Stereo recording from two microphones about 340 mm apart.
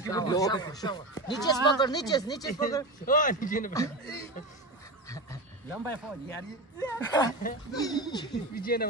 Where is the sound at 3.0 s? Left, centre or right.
Left.